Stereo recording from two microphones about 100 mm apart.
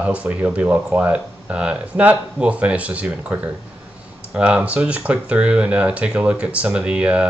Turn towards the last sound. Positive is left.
turn(degrees=-10)  # may be behind; listen again after turning